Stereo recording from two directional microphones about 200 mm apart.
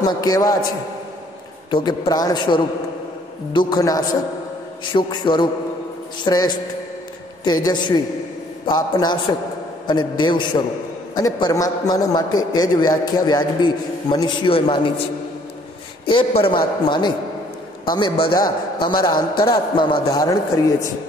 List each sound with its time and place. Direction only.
0.0 s a man's voice: 20° left (ahead or behind)
1.7 s a man's voice: 20° left (ahead or behind)
16.1 s a man's voice: 25° left (ahead or behind)